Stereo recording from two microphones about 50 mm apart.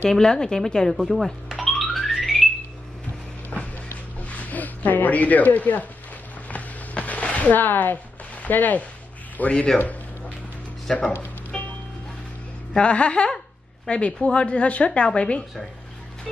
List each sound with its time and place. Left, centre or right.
0.1 s a woman's voice: centre
1.6 s music: centre
3.4 s music: left
6.5 s a sound: left
9.4 s a woman's voice: left
10.9 s a woman's voice: centre
11.5 s music: centre
12.7 s a woman's voice: left